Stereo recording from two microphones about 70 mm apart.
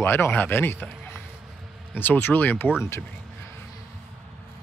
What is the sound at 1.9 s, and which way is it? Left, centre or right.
Speech, left.